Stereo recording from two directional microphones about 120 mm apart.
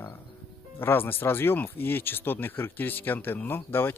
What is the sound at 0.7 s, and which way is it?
Speech, 20° left (ahead or behind).